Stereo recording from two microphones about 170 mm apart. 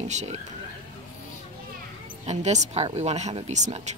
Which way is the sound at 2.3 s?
45° right (ahead or behind).